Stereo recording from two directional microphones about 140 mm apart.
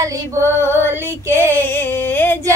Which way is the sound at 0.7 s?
15° left (ahead or behind).